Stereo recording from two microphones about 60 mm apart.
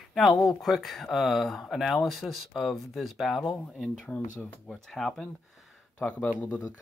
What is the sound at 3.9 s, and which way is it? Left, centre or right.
Speech, centre.